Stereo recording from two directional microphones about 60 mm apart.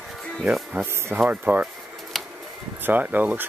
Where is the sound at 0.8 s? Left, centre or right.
Right.